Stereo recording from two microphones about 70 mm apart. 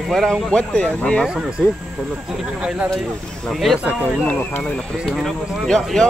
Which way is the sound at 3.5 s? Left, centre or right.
Centre.